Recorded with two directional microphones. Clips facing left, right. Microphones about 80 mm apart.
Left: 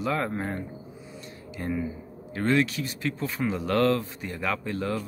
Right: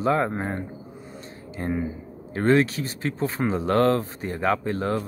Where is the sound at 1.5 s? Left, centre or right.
Right.